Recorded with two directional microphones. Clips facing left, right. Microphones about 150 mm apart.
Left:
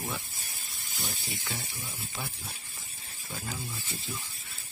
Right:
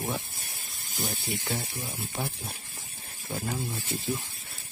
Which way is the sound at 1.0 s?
50° right (ahead or behind).